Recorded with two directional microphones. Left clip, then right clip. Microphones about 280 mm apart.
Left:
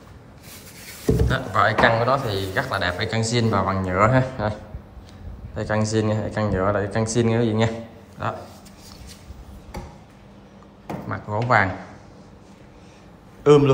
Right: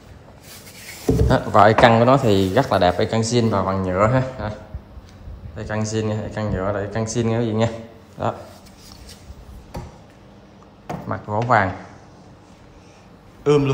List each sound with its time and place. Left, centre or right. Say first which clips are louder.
1.3 s a man's voice: right 7 dB; centre
11.1 s speech: right 2 dB; centre
13.4 s a sound: left 3 dB; centre